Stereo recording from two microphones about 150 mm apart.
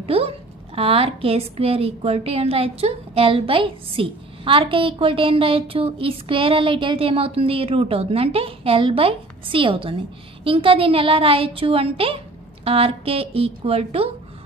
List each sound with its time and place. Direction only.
0.0 s a woman's voice: 40° right (ahead or behind)